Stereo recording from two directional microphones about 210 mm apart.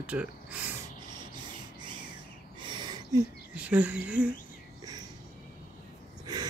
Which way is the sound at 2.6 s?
20° right (ahead or behind).